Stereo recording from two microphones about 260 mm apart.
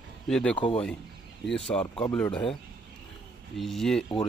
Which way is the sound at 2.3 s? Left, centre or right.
Centre.